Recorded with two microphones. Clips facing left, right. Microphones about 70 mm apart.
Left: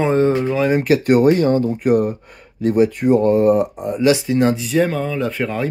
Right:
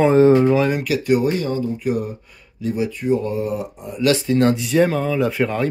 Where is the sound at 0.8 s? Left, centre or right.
Left.